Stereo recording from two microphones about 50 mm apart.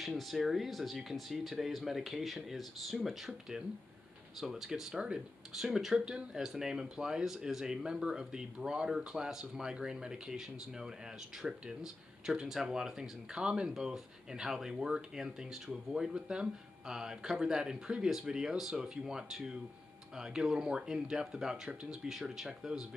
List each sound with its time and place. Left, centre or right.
0.0 s speech: centre
5.5 s speech: centre